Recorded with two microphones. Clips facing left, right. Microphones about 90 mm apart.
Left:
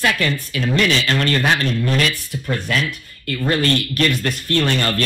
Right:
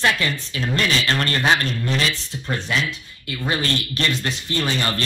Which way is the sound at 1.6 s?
50° left (ahead or behind).